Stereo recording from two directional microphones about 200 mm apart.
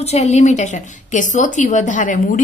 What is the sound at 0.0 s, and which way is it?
A woman's voice, 30° left (ahead or behind).